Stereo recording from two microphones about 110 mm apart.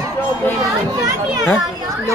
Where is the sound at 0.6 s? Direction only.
35° right (ahead or behind).